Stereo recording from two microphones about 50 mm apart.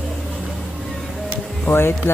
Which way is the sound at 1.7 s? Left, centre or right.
Left.